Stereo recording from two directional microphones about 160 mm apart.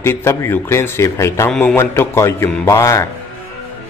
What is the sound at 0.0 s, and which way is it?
Speech, 15° left (ahead or behind).